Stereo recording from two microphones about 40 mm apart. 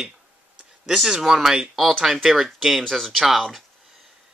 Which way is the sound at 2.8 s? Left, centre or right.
Centre.